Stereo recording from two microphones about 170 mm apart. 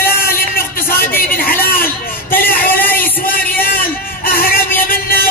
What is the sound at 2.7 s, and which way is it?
Music, 10° left (ahead or behind).